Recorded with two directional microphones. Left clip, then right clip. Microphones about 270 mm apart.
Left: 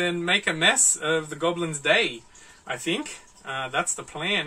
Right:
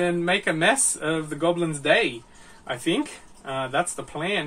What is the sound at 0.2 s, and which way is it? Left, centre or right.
Speech, centre.